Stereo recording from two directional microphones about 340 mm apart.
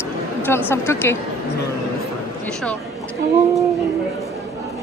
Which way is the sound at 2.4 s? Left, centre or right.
Centre.